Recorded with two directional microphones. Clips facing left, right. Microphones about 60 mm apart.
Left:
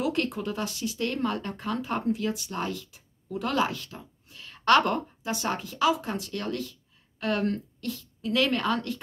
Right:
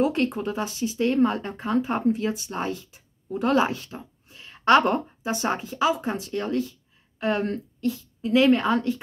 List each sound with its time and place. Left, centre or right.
0.0 s speech: right